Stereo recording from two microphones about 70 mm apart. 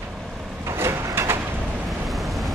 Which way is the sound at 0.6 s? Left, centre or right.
Right.